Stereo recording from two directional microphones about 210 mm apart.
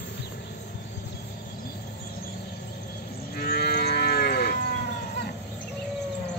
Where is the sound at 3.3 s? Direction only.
50° left (ahead or behind).